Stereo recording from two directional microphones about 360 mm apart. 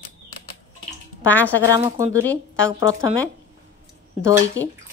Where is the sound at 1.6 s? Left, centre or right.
Centre.